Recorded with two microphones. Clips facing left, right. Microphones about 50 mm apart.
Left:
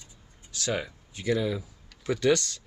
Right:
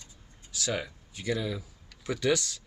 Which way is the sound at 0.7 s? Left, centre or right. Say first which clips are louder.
Left 2 dB; centre.